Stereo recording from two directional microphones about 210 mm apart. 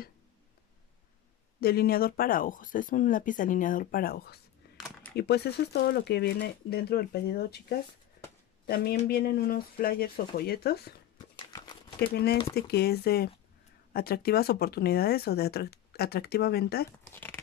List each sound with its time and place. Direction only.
1.6 s speech: 45° left (ahead or behind)
4.7 s a sound: centre (ahead or behind)
5.1 s speech: 50° left (ahead or behind)
8.6 s speech: 50° left (ahead or behind)
11.3 s horse: 20° left (ahead or behind)
12.0 s speech: 50° left (ahead or behind)
17.0 s speech: 10° left (ahead or behind)